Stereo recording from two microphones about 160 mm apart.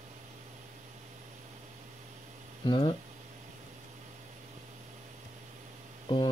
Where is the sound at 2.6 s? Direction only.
30° left (ahead or behind).